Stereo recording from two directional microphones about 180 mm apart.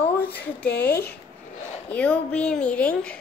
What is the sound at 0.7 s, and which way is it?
Speech, 65° left (ahead or behind).